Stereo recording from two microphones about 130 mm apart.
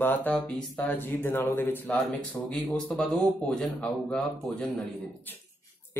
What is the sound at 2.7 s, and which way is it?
Speech, 5° left (ahead or behind).